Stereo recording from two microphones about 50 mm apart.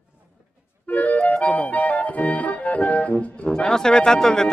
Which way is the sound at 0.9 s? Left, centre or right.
Left.